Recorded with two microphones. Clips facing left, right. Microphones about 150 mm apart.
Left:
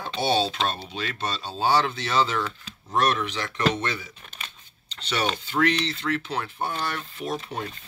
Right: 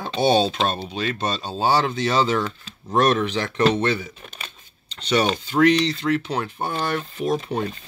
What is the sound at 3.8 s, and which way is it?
Speech, 30° right (ahead or behind).